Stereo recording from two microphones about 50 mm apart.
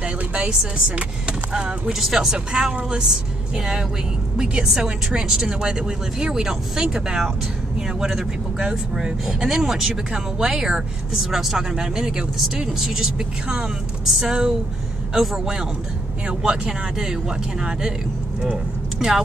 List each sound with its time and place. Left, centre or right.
0.0 s a sound: right
0.5 s a woman's voice: centre
14.2 s speech: centre
16.3 s a woman's voice: right